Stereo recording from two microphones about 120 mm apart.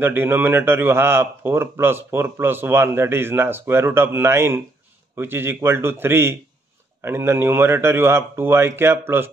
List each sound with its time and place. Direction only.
0.0 s a man's voice: 15° right (ahead or behind)